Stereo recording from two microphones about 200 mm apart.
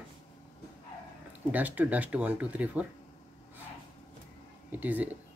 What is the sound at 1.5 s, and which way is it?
Speech, 10° right (ahead or behind).